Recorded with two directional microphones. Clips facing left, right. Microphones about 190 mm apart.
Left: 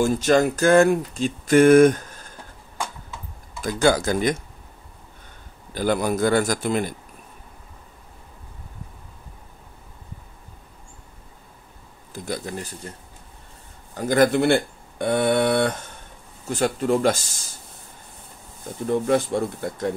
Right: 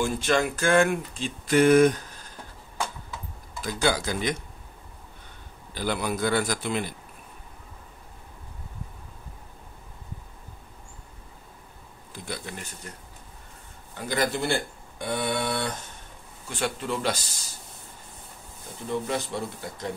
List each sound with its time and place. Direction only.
0.0 s speech: 40° left (ahead or behind)
3.6 s speech: 50° left (ahead or behind)
5.8 s speech: 45° left (ahead or behind)
12.1 s speech: 40° left (ahead or behind)
13.9 s speech: 50° left (ahead or behind)
16.4 s speech: 40° left (ahead or behind)
18.9 s speech: 50° left (ahead or behind)